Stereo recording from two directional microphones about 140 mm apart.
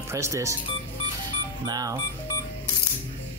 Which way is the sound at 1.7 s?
25° right (ahead or behind).